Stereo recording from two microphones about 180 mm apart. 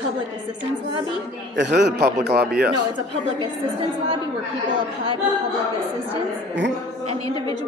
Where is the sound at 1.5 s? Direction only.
70° right (ahead or behind).